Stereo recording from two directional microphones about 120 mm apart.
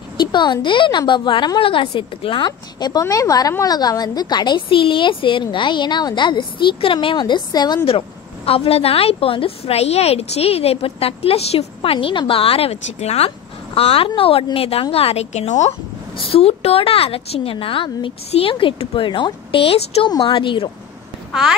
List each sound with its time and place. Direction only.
0.2 s a woman's voice: 40° left (ahead or behind)
8.5 s a woman's voice: 55° left (ahead or behind); by 15.7 s 70° left (ahead or behind)
16.2 s a woman's voice: 50° left (ahead or behind)
20.1 s a woman's voice: 35° left (ahead or behind)
21.3 s speech: 5° right (ahead or behind)